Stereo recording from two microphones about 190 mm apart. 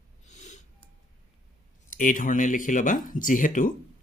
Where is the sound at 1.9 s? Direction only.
45° left (ahead or behind).